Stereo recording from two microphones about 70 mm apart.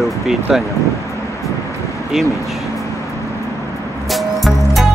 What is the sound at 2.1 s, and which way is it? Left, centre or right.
Speech, centre.